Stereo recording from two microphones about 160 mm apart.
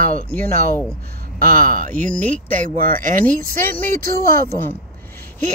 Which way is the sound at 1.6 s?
55° right (ahead or behind).